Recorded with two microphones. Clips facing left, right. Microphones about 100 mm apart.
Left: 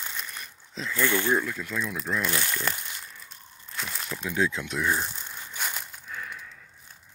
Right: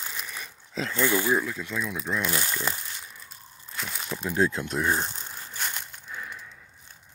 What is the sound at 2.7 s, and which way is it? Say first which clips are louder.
Crumpling: even; centre (ahead or behind).